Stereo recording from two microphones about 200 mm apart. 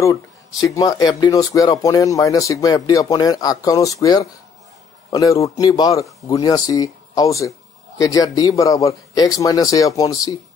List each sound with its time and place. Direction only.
0.0 s speech: 15° left (ahead or behind)